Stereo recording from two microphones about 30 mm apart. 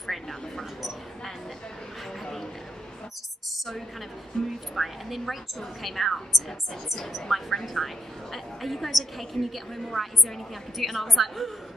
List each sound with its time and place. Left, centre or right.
0.0 s a sound: centre
4.3 s speech: left
4.7 s a woman's voice: centre